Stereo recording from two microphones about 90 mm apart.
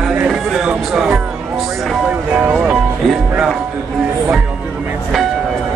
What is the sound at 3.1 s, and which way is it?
Music, 5° right (ahead or behind).